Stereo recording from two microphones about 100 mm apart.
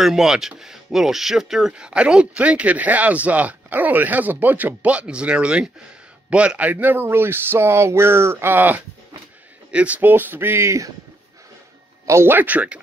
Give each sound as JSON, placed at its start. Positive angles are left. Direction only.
{"t": 0.0, "sound": "speech", "side_deg": -5}
{"t": 12.1, "sound": "speech", "side_deg": -25}